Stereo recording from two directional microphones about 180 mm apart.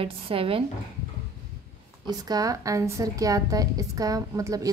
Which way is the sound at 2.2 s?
20° right (ahead or behind).